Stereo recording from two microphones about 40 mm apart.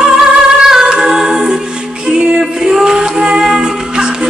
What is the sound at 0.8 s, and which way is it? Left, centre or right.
A capella, centre.